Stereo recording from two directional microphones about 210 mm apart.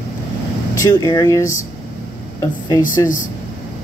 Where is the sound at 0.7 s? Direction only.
15° left (ahead or behind).